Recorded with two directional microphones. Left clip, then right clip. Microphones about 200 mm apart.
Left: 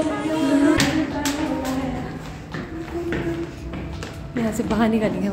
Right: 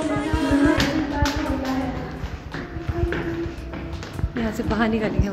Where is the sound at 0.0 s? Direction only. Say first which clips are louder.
Left 2 dB; centre (ahead or behind).